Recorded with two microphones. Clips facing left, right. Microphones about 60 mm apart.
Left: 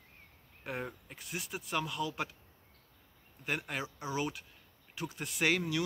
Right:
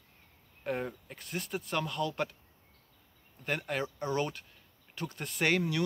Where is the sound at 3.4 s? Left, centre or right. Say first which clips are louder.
Right 3 dB; centre.